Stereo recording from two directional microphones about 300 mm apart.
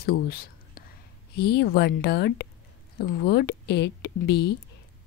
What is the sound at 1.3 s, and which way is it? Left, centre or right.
A woman's voice, left.